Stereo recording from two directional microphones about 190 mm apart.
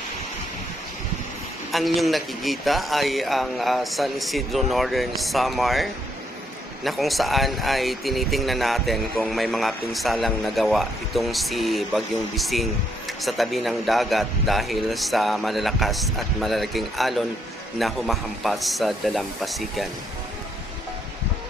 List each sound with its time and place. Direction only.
1.7 s speech: centre (ahead or behind)